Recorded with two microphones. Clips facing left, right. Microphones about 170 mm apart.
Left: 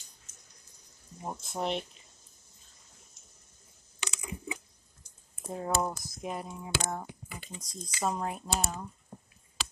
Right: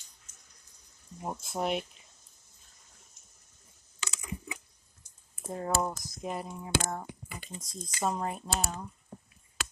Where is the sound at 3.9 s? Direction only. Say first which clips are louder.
Left 2 dB; 15° left (ahead or behind).